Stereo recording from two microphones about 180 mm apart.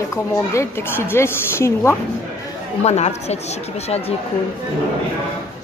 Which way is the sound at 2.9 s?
35° left (ahead or behind).